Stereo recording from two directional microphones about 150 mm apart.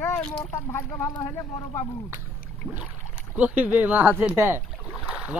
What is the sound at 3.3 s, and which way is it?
Speech, 10° right (ahead or behind).